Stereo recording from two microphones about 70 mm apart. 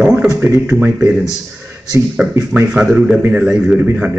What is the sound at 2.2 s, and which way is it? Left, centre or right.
Speech, right.